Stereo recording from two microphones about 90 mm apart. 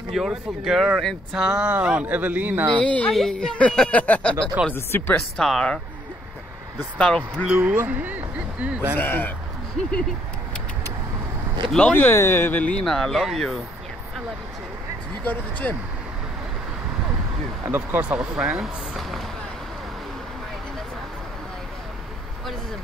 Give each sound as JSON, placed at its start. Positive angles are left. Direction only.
{"t": 0.1, "sound": "speech", "side_deg": 0}
{"t": 2.8, "sound": "speech", "side_deg": 15}
{"t": 3.1, "sound": "speech", "side_deg": 5}
{"t": 4.7, "sound": "speech", "side_deg": 25}
{"t": 5.4, "sound": "speech", "side_deg": 5}
{"t": 7.0, "sound": "speech", "side_deg": 10}
{"t": 7.4, "sound": "speech", "side_deg": -15}
{"t": 8.9, "sound": "speech", "side_deg": 20}
{"t": 11.9, "sound": "speech", "side_deg": 25}
{"t": 12.8, "sound": "speech", "side_deg": 5}
{"t": 15.7, "sound": "speech", "side_deg": 15}
{"t": 17.6, "sound": "speech", "side_deg": -20}